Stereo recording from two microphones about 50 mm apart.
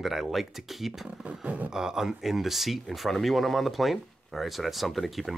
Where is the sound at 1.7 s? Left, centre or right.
Centre.